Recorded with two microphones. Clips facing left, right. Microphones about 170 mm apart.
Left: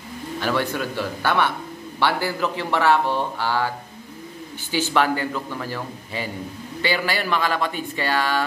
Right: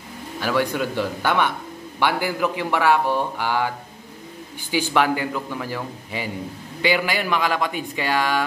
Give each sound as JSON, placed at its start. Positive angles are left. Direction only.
{"t": 0.4, "sound": "a man's voice", "side_deg": -10}